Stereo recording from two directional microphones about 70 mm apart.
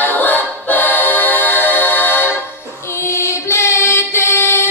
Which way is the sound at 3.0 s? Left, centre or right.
Left.